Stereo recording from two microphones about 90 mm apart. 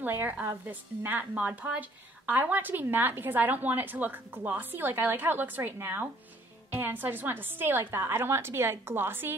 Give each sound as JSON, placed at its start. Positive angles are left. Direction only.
{"t": 0.0, "sound": "a woman's voice", "side_deg": -25}